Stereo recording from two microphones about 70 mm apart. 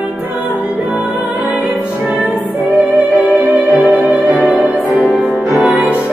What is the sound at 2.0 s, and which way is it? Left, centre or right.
Music, centre.